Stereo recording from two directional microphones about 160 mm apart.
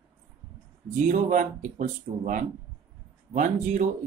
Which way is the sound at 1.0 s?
55° right (ahead or behind).